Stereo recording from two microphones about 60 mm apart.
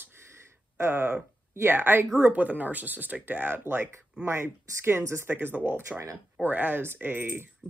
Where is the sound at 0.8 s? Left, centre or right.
Right.